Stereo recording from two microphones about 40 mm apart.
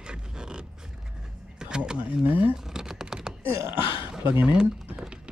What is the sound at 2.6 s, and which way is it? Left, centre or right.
Typing, centre.